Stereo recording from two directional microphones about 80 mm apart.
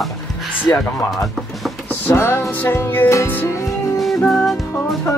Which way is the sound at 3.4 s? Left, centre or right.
Left.